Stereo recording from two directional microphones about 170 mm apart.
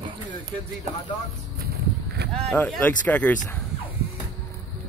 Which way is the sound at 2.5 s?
10° left (ahead or behind).